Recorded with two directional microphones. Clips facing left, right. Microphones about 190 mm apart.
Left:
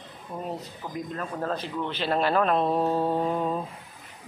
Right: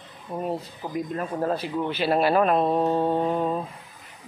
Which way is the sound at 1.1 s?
15° right (ahead or behind).